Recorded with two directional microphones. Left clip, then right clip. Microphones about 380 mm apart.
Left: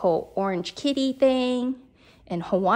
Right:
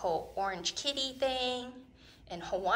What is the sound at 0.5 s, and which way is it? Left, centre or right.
Speech, centre.